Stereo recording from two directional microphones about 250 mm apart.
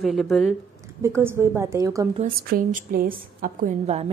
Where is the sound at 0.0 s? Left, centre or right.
Centre.